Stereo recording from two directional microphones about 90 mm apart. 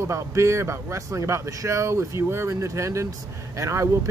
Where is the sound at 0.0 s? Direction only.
35° right (ahead or behind).